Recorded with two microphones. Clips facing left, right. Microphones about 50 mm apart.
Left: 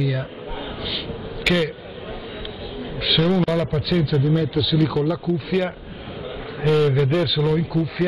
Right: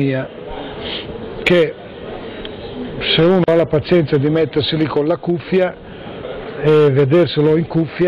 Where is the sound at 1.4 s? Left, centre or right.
Right.